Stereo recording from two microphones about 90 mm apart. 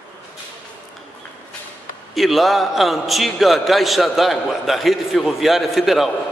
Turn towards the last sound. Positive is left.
turn(degrees=0)  # may be behind; listen again after turning